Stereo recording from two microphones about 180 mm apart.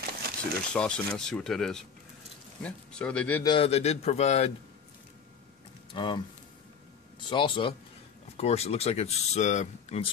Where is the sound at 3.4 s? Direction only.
30° left (ahead or behind).